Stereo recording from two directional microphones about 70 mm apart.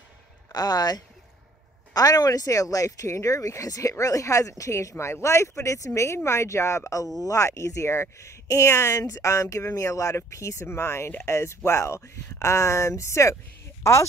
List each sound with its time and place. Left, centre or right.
0.5 s speech: left